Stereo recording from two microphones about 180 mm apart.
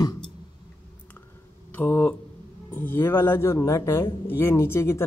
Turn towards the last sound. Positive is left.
turn(degrees=15)  # may be behind; listen again after turning